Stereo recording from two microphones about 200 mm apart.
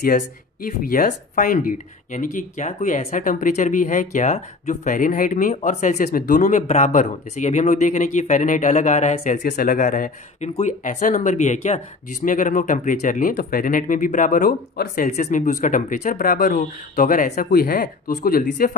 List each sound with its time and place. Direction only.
0.9 s speech: 40° left (ahead or behind)